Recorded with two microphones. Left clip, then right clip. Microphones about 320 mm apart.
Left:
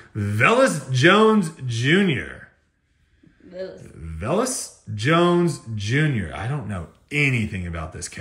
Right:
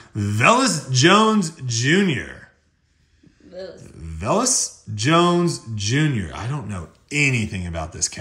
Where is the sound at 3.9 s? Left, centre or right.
Centre.